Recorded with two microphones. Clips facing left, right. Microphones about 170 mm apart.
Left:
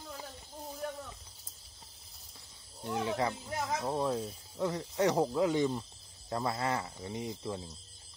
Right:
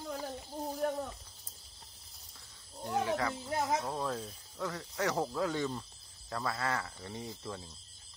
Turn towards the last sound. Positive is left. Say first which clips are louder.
# left 4 dB
turn(degrees=15)  # may be behind; listen again after turning